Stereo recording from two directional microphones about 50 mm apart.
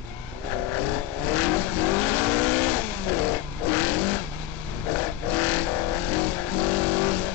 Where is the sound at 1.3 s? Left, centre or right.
Left.